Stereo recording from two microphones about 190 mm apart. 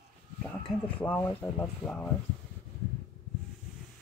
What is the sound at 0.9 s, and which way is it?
Speech, 10° left (ahead or behind).